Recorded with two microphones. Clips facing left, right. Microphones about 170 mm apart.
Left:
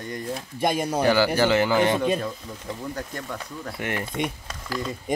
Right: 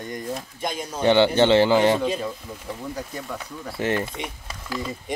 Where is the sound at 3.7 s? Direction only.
25° right (ahead or behind).